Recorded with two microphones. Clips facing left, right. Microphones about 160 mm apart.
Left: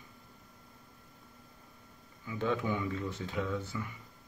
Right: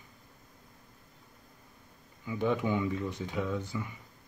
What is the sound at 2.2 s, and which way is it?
Speech, 15° right (ahead or behind).